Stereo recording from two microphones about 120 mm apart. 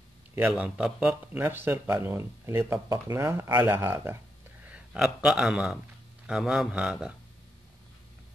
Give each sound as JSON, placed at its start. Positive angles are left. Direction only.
{"t": 0.5, "sound": "speech", "side_deg": -10}
{"t": 1.4, "sound": "speech", "side_deg": -20}
{"t": 4.6, "sound": "speech", "side_deg": -5}